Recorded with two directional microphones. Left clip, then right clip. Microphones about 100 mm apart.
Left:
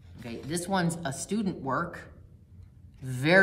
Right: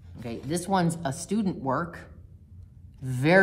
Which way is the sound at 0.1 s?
60° right (ahead or behind).